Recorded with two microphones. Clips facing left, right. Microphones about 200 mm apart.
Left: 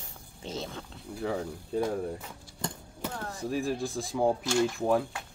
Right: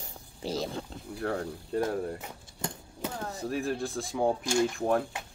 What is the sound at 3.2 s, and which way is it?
Speech, 20° right (ahead or behind).